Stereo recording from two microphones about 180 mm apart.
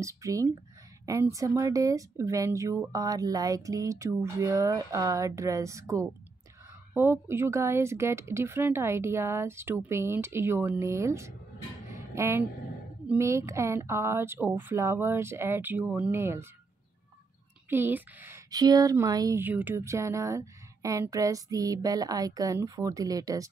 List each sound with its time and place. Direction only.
0.0 s speech: 15° right (ahead or behind)
11.9 s a sound: 15° right (ahead or behind)
13.0 s speech: 10° right (ahead or behind)
17.6 s a woman's voice: 10° right (ahead or behind)